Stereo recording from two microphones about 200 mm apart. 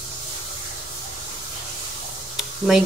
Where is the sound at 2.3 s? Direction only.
5° right (ahead or behind).